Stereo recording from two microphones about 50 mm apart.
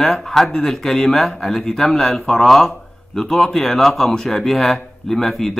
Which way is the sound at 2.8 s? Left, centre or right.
Centre.